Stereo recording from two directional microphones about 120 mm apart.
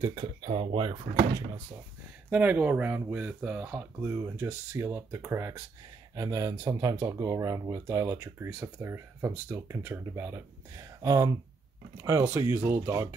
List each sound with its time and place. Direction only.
0.1 s speech: 50° right (ahead or behind)
2.2 s speech: 15° right (ahead or behind)